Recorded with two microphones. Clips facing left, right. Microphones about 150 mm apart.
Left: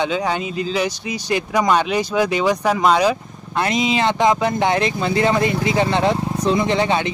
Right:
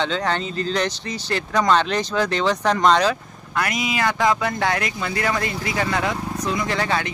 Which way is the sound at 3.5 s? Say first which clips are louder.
Left 5 dB; 25° left (ahead or behind).